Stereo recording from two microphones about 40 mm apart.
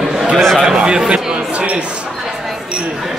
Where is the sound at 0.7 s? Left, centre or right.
Centre.